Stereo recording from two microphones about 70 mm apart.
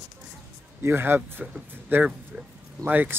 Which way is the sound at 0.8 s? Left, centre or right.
Right.